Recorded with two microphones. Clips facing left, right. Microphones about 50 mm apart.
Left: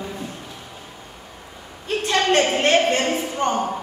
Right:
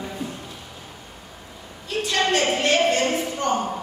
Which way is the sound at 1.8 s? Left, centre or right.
Left.